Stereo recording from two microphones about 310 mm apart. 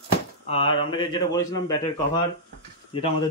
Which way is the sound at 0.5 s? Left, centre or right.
Centre.